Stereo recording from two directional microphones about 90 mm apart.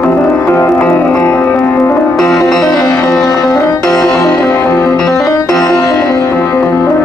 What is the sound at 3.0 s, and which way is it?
Music, 5° left (ahead or behind).